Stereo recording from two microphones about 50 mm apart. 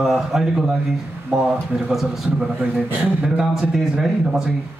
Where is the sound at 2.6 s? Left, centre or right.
Right.